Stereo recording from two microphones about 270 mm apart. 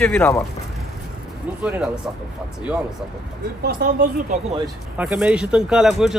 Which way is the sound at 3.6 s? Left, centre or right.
Right.